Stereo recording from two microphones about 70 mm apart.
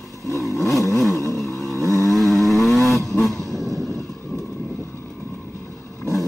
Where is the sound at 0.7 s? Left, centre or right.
Left.